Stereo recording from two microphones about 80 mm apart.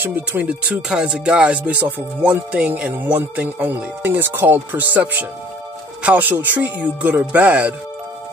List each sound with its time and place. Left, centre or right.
0.0 s speech: right
0.8 s music: centre
2.9 s speech: right